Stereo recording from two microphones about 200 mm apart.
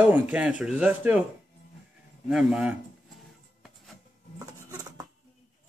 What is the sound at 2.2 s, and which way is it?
Speech, 5° right (ahead or behind).